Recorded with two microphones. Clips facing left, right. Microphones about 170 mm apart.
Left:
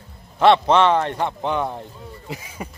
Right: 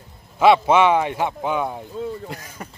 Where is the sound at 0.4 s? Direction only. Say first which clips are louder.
Even; 5° right (ahead or behind).